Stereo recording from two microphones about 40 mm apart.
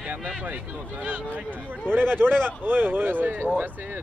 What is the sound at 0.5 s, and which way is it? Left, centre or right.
Speech, right.